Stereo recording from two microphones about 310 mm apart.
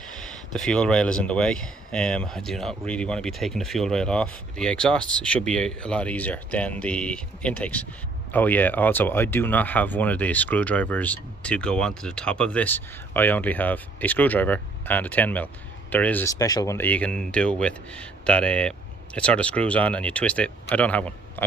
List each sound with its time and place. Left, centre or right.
0.2 s speech: centre